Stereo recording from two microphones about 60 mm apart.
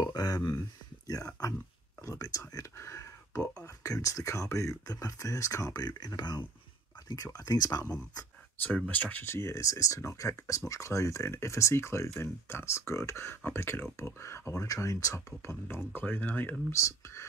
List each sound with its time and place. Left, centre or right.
0.0 s speech: left
2.0 s speech: left
2.8 s whispering: left
3.5 s speech: left
7.2 s speech: left
8.6 s speech: left
9.2 s speech: left
9.6 s speech: left
14.7 s speech: left
15.1 s speech: left
16.7 s speech: left